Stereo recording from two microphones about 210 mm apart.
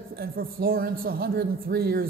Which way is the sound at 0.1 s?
45° right (ahead or behind).